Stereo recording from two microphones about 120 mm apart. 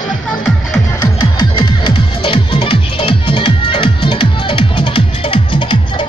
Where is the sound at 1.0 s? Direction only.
40° left (ahead or behind).